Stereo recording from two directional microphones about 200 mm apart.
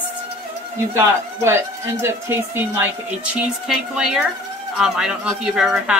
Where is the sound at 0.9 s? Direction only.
15° right (ahead or behind).